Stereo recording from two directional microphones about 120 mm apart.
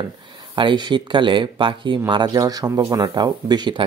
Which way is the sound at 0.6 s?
40° right (ahead or behind).